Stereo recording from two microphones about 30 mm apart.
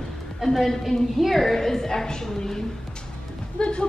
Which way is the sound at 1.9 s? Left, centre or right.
Left.